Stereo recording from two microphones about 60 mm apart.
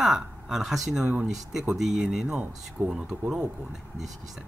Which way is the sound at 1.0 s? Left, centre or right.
Centre.